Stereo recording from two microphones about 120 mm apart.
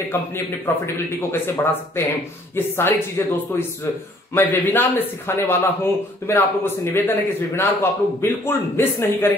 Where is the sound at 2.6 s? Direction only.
20° left (ahead or behind).